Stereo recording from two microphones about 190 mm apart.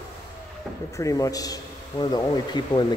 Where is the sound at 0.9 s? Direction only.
15° left (ahead or behind).